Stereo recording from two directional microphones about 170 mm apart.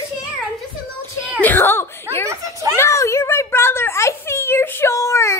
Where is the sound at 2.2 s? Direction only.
20° right (ahead or behind).